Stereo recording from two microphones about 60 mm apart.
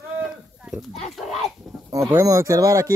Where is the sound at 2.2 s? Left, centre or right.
Right.